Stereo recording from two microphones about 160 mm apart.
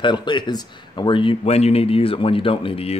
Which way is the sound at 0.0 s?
30° left (ahead or behind).